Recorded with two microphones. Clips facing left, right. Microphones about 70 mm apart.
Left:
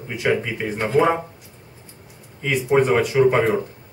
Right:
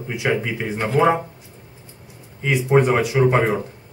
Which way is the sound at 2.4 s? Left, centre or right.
Centre.